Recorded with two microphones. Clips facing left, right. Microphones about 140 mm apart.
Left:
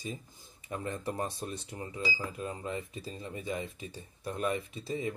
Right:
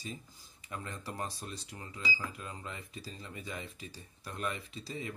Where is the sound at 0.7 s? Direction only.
25° left (ahead or behind).